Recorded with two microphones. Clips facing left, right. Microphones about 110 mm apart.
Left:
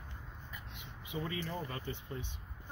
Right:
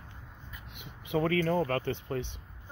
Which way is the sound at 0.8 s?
70° right (ahead or behind).